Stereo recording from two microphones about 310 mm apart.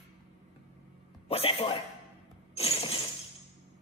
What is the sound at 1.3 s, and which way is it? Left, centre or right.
Speech, centre.